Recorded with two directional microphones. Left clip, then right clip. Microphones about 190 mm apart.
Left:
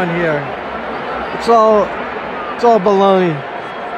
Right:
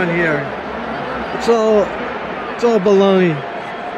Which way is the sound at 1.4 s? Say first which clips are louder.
Left 3 dB; 10° left (ahead or behind).